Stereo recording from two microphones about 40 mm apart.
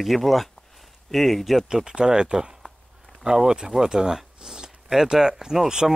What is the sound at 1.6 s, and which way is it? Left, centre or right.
Speech, centre.